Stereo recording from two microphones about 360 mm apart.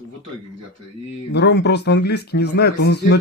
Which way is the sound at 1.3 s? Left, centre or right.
Left.